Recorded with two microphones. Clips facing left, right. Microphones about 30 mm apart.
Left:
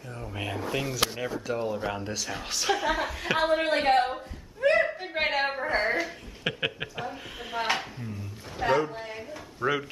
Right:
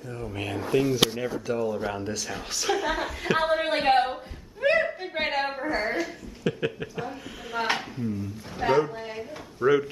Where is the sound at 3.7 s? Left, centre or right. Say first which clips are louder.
Right 1 dB; right.